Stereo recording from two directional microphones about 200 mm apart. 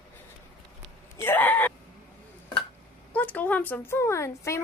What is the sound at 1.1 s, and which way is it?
Speech, 10° left (ahead or behind).